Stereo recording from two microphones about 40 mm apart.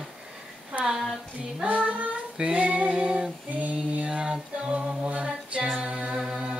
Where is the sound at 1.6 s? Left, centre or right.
Right.